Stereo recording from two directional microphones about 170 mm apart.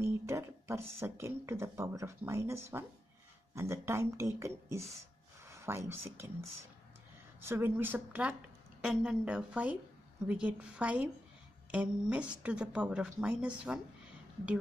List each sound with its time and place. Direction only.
0.0 s speech: 15° right (ahead or behind)
7.4 s speech: 15° right (ahead or behind)